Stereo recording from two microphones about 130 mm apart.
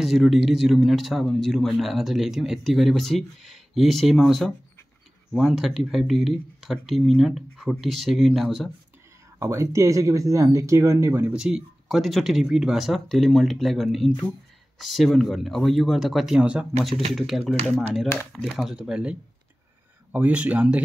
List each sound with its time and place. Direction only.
0.0 s speech: centre (ahead or behind)
9.4 s speech: 20° right (ahead or behind)
11.3 s speech: 5° right (ahead or behind)